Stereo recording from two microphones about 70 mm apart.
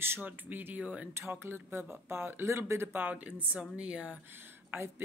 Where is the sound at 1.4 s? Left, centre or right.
Right; by 4.2 s centre.